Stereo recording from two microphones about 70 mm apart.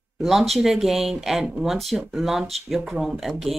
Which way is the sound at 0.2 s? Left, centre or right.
Centre.